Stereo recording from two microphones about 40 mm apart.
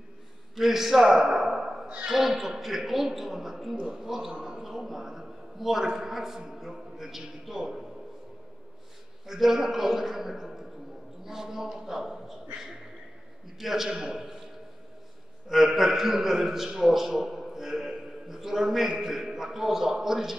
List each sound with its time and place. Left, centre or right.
0.6 s a sound: centre
2.0 s a man's voice: centre
9.2 s a man's voice: centre
13.6 s a man's voice: centre
13.9 s a man's voice: right
15.4 s a man's voice: centre